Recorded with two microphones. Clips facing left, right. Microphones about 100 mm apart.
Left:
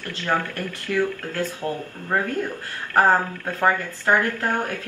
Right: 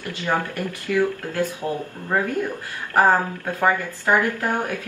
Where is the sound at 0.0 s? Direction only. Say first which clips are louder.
Right 1 dB; 15° right (ahead or behind).